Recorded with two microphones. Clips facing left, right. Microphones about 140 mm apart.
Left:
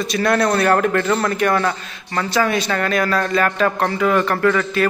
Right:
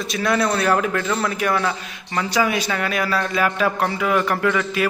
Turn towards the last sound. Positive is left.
turn(degrees=-10)  # may be behind; listen again after turning